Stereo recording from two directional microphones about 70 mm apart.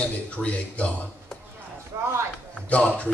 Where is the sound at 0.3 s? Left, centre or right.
Centre.